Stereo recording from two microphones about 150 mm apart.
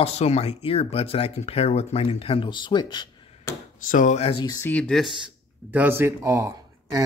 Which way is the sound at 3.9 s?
60° left (ahead or behind).